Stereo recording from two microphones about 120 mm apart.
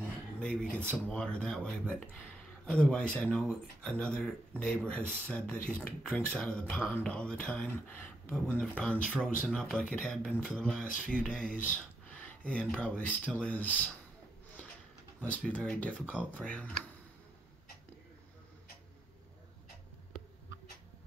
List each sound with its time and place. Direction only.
0.4 s a man's voice: 10° left (ahead or behind)
15.1 s speech: 10° left (ahead or behind)